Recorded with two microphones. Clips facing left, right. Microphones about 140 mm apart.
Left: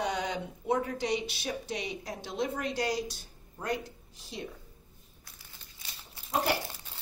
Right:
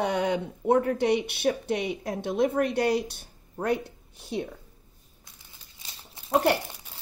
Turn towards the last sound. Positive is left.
turn(degrees=-65)  # may be behind; listen again after turning